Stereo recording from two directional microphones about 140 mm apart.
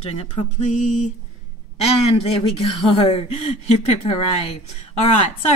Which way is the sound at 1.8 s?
45° left (ahead or behind).